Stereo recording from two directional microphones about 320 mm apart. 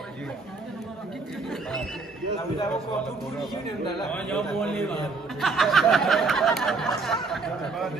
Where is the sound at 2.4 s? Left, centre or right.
Centre.